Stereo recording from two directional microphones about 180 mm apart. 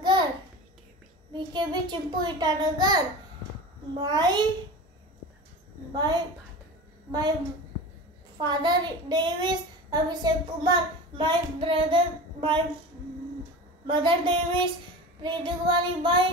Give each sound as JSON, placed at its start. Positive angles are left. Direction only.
{"t": 0.1, "sound": "a sound", "side_deg": -25}
{"t": 1.3, "sound": "a child's voice", "side_deg": -25}
{"t": 4.0, "sound": "a child's voice", "side_deg": -25}
{"t": 7.1, "sound": "a woman's voice", "side_deg": -20}
{"t": 8.4, "sound": "a child's voice", "side_deg": -25}
{"t": 13.8, "sound": "a child's voice", "side_deg": -30}